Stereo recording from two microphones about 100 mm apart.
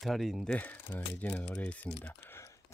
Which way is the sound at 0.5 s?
20° left (ahead or behind).